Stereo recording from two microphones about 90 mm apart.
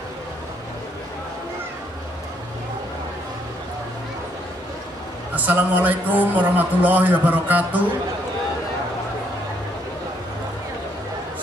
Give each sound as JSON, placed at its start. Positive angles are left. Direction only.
{"t": 5.3, "sound": "a man's voice", "side_deg": -20}